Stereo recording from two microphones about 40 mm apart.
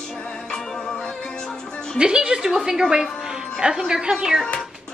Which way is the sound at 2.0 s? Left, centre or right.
Right.